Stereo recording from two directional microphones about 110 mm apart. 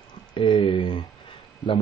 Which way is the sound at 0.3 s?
50° left (ahead or behind).